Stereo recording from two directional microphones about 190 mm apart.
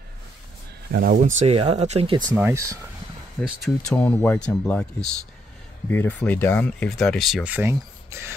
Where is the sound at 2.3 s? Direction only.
15° right (ahead or behind).